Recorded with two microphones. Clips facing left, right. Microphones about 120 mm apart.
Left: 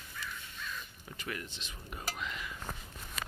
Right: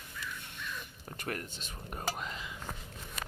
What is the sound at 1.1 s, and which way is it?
Speech, 50° right (ahead or behind).